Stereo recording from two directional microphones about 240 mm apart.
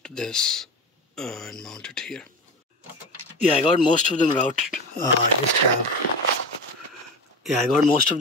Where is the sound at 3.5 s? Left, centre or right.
Left.